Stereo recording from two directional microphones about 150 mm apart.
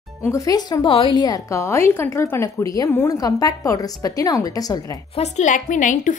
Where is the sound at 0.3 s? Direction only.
25° left (ahead or behind).